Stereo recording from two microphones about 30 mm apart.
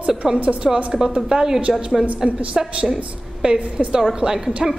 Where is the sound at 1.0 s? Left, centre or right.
Right.